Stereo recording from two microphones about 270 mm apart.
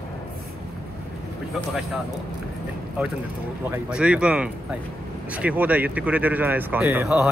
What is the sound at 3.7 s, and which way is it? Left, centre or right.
Speech, centre.